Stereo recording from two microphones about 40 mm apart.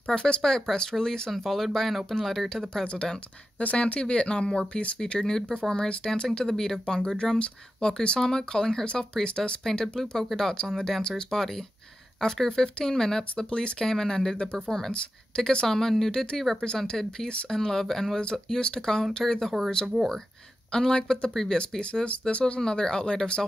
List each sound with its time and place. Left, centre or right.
0.1 s speech: centre
1.3 s speech: centre
2.8 s speech: left
5.2 s speech: centre
8.2 s speech: centre
9.9 s speech: centre
16.1 s speech: centre
18.2 s speech: left
20.7 s speech: centre